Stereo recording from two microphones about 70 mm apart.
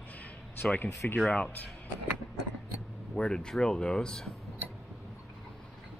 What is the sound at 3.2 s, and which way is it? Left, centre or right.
Speech, centre.